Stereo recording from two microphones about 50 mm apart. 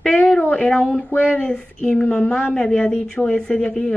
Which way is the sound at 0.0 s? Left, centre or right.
Left.